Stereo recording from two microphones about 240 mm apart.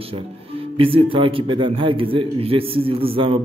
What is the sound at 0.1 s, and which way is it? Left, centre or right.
Speech, right.